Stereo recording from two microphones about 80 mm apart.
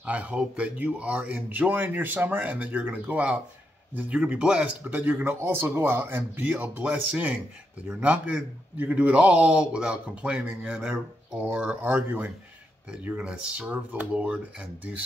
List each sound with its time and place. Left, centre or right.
0.0 s a man's voice: centre